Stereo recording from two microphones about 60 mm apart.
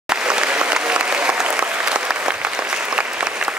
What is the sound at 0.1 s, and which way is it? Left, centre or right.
Applause, centre.